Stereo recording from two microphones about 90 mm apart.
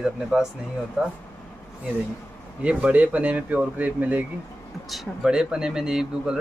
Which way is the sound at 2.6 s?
15° right (ahead or behind).